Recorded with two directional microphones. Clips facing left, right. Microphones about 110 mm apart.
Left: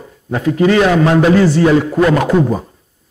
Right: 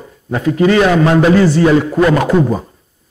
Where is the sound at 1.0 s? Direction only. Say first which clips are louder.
Even; 20° right (ahead or behind).